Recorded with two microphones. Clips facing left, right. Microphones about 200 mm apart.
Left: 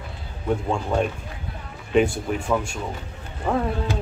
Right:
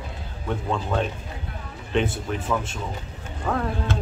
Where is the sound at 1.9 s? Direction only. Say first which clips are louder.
Left 5 dB; centre (ahead or behind).